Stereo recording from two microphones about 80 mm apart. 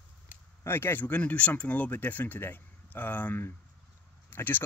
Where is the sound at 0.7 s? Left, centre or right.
Left.